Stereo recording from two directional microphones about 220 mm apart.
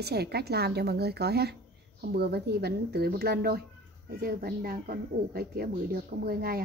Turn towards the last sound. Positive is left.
turn(degrees=-45)  # may be behind; listen again after turning